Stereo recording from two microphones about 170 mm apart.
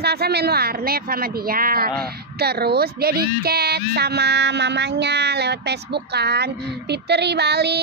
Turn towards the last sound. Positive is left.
turn(degrees=-75)  # may be behind; listen again after turning